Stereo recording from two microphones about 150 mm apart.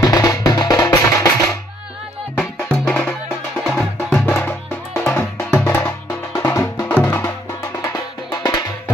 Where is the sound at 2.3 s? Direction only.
10° left (ahead or behind).